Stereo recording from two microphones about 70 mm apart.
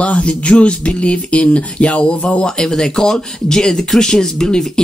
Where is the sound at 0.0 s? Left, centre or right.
Centre.